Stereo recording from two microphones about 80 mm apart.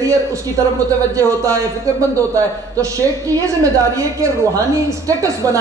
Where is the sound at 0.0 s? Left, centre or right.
Right.